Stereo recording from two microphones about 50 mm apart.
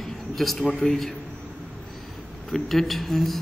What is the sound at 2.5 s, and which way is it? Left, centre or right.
Speech, centre.